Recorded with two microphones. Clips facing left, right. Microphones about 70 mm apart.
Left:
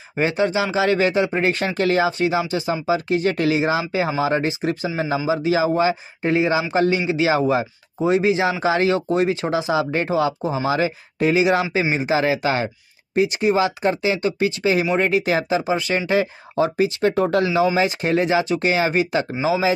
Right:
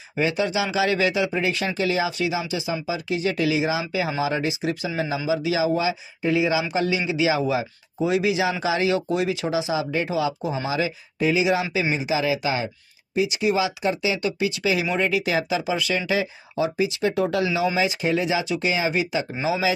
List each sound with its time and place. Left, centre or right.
0.1 s speech: left
19.4 s speech: left